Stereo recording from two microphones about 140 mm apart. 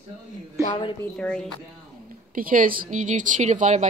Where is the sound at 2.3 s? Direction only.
85° right; by 3.8 s 60° right (ahead or behind).